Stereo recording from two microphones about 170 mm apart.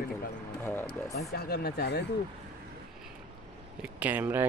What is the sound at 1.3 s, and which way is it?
Speech, 65° left (ahead or behind).